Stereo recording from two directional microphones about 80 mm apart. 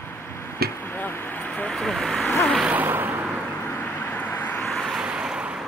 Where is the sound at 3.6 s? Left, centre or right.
Left.